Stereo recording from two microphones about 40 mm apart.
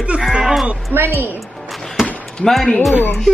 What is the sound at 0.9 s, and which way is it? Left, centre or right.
Speech, right.